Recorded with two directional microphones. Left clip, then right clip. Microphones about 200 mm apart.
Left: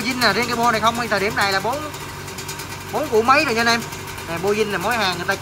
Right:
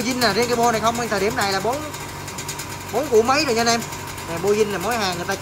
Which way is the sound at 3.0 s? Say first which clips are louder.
Left 1 dB; 5° right (ahead or behind).